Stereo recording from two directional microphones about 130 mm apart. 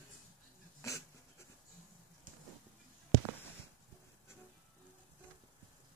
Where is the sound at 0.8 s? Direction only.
25° left (ahead or behind).